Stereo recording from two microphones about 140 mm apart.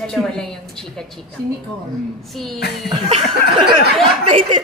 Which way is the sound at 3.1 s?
35° right (ahead or behind).